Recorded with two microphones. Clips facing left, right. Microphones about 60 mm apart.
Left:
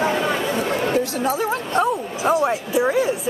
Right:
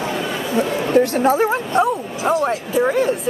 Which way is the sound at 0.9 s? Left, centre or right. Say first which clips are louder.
Right 6 dB; right.